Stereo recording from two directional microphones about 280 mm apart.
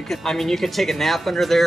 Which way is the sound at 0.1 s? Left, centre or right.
Centre.